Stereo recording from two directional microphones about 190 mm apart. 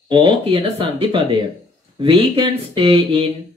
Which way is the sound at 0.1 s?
30° right (ahead or behind).